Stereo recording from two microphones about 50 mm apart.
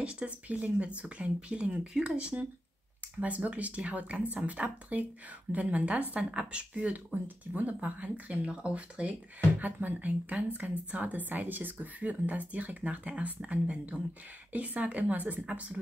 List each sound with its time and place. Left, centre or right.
0.0 s speech: right